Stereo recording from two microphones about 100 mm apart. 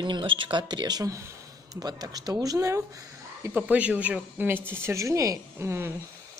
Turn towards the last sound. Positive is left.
turn(degrees=-30)  # may be behind; listen again after turning